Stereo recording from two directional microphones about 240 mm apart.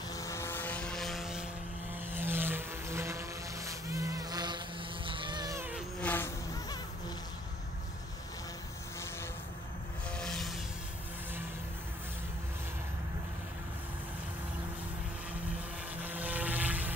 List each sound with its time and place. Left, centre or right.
0.1 s vehicle: centre
5.9 s insect: centre
10.1 s vehicle: centre
16.0 s a sound: centre